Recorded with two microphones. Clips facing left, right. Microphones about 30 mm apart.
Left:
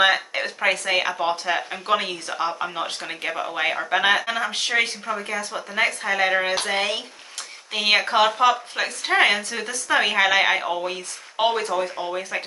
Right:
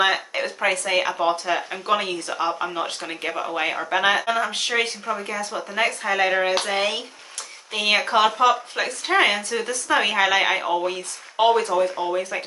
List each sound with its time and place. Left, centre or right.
0.0 s speech: centre
7.7 s speech: centre